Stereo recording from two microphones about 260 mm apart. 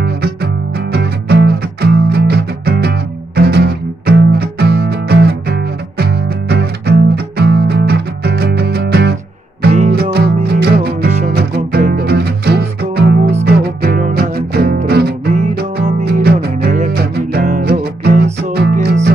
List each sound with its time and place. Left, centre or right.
0.0 s music: right